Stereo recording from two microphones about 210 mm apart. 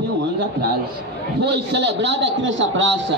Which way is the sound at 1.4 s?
55° right (ahead or behind).